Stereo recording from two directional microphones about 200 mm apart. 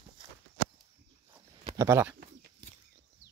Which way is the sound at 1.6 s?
15° right (ahead or behind).